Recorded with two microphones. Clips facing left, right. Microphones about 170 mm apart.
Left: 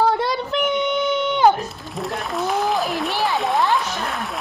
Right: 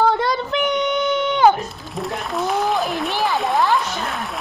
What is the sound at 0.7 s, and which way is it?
Child singing, 25° left (ahead or behind).